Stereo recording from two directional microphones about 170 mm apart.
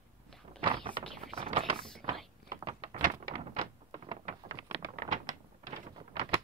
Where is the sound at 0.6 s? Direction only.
25° right (ahead or behind).